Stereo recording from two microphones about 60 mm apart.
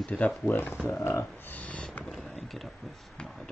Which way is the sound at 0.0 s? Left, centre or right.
Centre.